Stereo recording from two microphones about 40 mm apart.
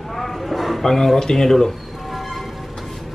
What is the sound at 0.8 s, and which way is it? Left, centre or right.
Speech, centre.